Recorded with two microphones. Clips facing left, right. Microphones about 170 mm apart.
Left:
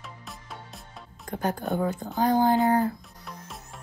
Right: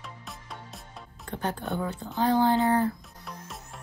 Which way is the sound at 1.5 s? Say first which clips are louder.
Left 4 dB; 40° left (ahead or behind).